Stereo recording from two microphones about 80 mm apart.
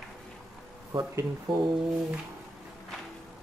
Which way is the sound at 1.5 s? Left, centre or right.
Right.